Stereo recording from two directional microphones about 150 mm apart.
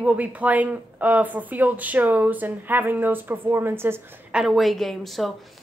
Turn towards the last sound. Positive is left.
turn(degrees=0)  # may be behind; listen again after turning